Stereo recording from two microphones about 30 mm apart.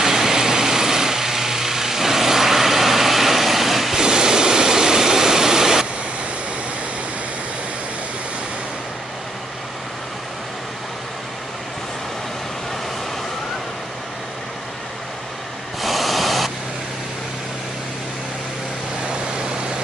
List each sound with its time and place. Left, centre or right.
0.0 s vehicle: centre
3.9 s vehicle: right
15.8 s a sound: centre